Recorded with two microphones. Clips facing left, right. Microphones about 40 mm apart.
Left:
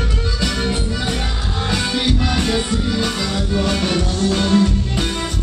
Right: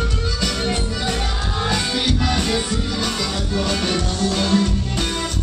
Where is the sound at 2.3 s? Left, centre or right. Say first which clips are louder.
Left 2 dB; centre.